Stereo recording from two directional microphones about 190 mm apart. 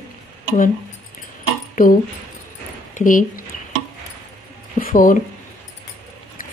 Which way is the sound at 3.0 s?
45° left (ahead or behind).